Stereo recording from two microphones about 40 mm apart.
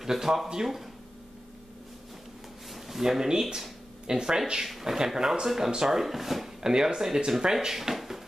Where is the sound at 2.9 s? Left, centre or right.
Centre.